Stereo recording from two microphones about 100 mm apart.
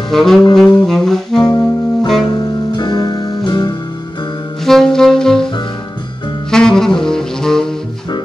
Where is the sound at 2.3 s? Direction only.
45° left (ahead or behind).